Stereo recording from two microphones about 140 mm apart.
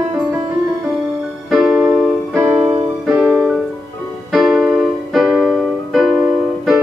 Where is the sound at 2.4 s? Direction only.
15° right (ahead or behind).